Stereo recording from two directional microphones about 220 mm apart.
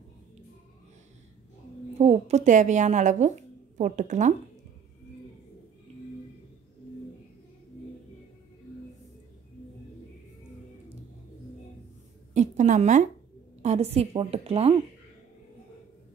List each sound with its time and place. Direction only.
2.0 s speech: 30° right (ahead or behind)
12.4 s a woman's voice: 35° right (ahead or behind)